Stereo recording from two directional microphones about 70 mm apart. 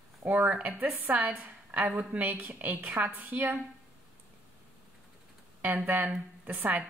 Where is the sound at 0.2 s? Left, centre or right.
Right.